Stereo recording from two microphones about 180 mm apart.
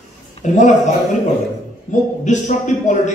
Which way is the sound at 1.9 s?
45° left (ahead or behind).